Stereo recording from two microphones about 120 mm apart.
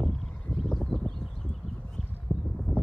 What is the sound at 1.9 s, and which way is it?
Horse, 5° left (ahead or behind).